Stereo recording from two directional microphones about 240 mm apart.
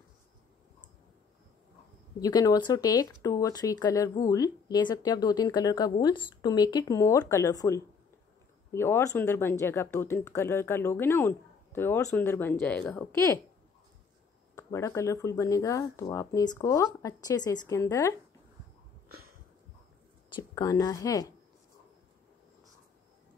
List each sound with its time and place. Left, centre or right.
2.1 s speech: centre
14.5 s speech: centre
20.3 s speech: centre